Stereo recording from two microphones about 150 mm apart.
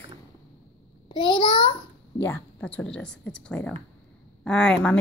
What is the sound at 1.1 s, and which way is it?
Speech, 30° left (ahead or behind).